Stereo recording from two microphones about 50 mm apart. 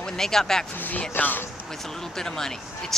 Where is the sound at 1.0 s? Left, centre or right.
Left.